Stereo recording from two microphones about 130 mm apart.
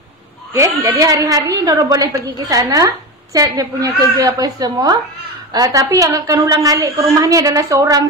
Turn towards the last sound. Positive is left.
turn(degrees=-25)  # may be behind; listen again after turning